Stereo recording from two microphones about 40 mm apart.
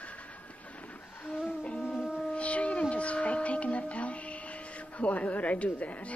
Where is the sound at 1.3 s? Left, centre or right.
Left.